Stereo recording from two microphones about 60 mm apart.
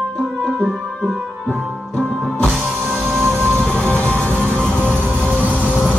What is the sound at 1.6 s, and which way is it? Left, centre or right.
Music, centre.